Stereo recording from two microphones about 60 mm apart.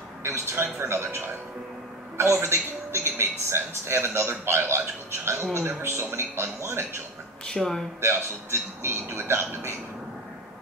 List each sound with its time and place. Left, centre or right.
0.2 s a man's voice: right
7.4 s speech: centre
8.0 s a man's voice: right